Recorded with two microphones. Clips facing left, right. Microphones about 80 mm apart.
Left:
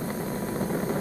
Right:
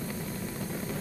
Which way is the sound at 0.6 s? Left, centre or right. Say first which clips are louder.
Left 9 dB; left.